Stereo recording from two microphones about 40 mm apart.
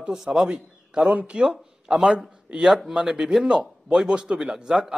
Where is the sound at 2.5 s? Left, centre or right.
Right.